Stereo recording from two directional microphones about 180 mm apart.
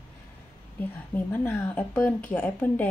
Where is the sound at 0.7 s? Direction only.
10° left (ahead or behind).